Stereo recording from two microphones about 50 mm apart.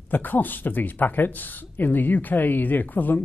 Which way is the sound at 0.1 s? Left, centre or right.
Left.